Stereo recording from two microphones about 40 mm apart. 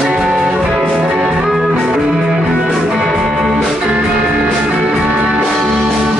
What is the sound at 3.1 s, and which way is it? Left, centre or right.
Music, centre.